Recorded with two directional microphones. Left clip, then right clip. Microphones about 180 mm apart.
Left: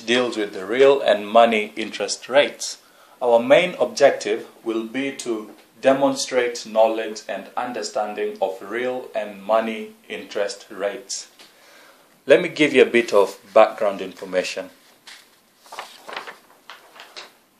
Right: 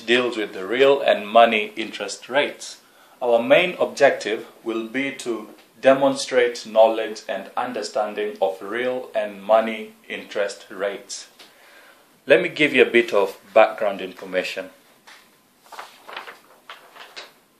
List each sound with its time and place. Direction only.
0.0 s speech: 25° left (ahead or behind); by 2.7 s 45° left (ahead or behind)
3.2 s a man's voice: 35° left (ahead or behind)
3.9 s speech: 10° left (ahead or behind)
12.3 s speech: 25° left (ahead or behind)
15.7 s a sound: 55° left (ahead or behind)